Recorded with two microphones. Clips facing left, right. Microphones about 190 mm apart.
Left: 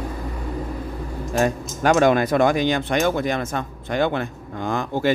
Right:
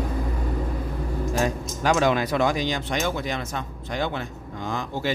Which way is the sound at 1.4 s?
55° left (ahead or behind).